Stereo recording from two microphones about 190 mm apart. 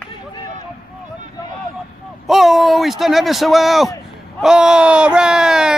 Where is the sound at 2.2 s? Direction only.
Centre (ahead or behind).